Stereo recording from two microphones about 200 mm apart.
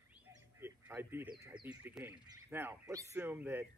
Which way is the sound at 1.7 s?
10° right (ahead or behind).